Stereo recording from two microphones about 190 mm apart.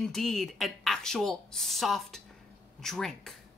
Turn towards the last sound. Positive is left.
turn(degrees=0)  # may be behind; listen again after turning